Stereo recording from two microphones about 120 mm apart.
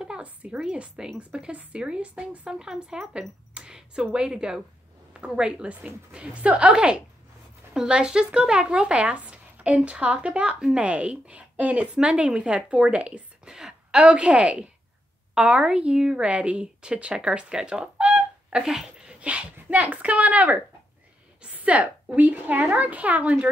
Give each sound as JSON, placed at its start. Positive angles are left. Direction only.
{"t": 0.0, "sound": "a woman's voice", "side_deg": -10}